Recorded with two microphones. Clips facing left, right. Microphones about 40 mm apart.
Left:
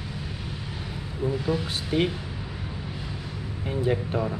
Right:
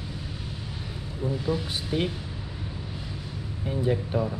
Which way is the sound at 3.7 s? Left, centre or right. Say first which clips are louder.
Left 1 dB; left.